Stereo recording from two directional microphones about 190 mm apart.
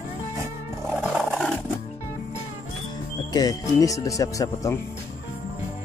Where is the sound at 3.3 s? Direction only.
20° left (ahead or behind).